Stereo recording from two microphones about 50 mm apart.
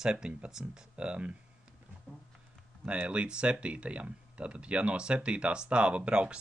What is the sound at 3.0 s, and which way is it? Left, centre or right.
Speech, right.